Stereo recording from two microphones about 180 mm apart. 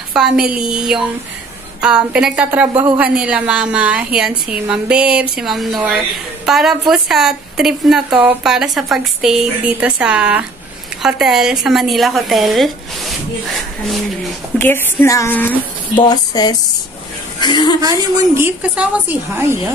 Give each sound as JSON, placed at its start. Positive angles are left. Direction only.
{"t": 0.1, "sound": "a woman's voice", "side_deg": -5}
{"t": 14.6, "sound": "speech", "side_deg": 10}
{"t": 17.7, "sound": "a woman's voice", "side_deg": -20}